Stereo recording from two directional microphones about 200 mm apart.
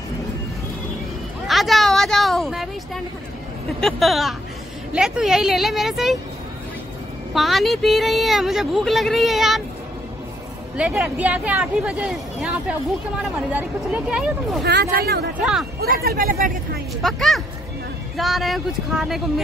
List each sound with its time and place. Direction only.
1.5 s a sound: centre (ahead or behind)
3.8 s speech: centre (ahead or behind)
7.3 s speech: centre (ahead or behind)
10.8 s speech: 5° right (ahead or behind)
14.6 s speech: 55° right (ahead or behind)
17.0 s speech: centre (ahead or behind)